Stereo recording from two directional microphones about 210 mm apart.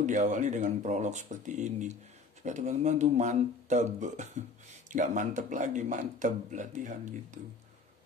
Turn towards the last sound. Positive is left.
turn(degrees=-35)  # may be behind; listen again after turning